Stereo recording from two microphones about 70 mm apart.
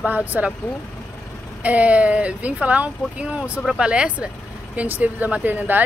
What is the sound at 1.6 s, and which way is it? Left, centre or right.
Speech, right.